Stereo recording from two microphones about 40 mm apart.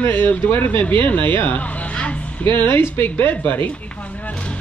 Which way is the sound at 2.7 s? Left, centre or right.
Left.